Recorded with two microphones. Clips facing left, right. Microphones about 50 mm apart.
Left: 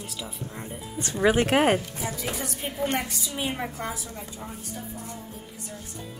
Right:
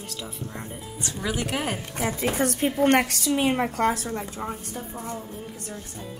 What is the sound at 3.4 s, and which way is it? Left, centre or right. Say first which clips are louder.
Speech: right 5 dB; right.